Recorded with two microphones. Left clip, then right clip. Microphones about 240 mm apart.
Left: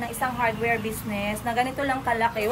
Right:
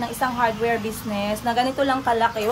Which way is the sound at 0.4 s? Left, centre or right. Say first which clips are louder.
Right 3 dB; centre.